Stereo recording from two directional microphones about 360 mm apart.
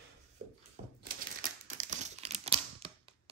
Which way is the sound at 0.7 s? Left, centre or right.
Right.